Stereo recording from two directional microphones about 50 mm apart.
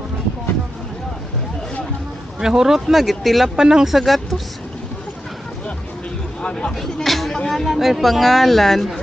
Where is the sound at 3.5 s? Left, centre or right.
Centre.